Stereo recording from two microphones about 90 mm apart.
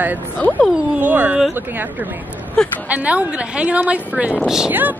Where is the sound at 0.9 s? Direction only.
15° right (ahead or behind).